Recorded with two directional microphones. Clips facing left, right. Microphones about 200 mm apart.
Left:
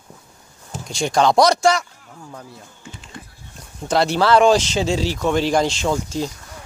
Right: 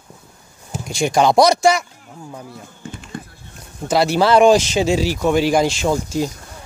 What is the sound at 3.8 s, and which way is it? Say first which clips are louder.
Speech: right 2 dB; 5° right (ahead or behind).